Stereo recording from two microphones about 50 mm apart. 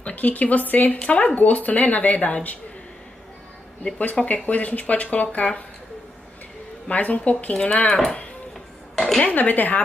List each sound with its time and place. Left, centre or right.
0.0 s speech: left
3.8 s speech: left
6.9 s speech: left
8.9 s dishes: centre
9.2 s speech: left